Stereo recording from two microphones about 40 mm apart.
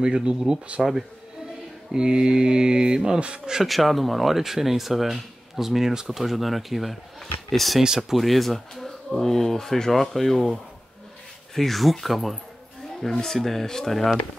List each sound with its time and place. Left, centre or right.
0.0 s mantra: right
0.8 s speech: centre
1.9 s mantra: centre
3.6 s speech: centre
7.8 s speech: centre
8.2 s speech: centre
13.1 s speech: centre